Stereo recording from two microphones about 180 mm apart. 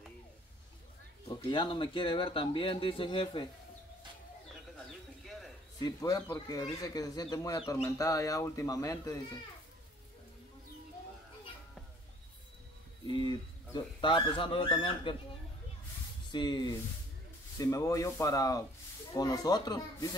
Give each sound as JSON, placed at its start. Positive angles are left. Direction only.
{"t": 1.3, "sound": "speech", "side_deg": 25}
{"t": 5.2, "sound": "a sound", "side_deg": 0}
{"t": 5.8, "sound": "speech", "side_deg": 20}
{"t": 13.1, "sound": "speech", "side_deg": 25}
{"t": 16.3, "sound": "speech", "side_deg": 25}